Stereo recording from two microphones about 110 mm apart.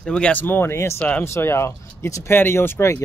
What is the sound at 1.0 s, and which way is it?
Speech, 15° left (ahead or behind).